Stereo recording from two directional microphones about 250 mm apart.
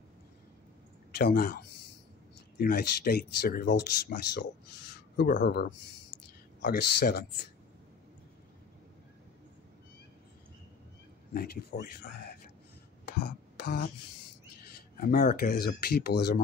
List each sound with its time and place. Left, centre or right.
1.1 s speech: left
11.3 s speech: left
13.6 s a sound: left
15.0 s speech: left